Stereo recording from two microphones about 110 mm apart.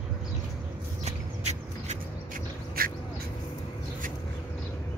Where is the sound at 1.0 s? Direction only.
90° right.